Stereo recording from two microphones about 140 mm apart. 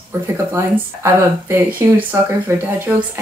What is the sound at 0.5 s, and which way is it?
Speech, 20° right (ahead or behind).